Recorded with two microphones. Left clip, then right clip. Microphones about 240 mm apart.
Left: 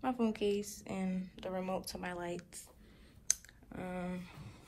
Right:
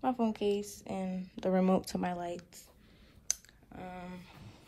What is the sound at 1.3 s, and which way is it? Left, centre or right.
Speech, right.